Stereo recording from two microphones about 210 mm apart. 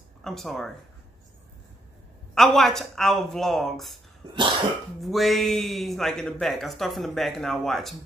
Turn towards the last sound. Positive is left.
turn(degrees=0)  # may be behind; listen again after turning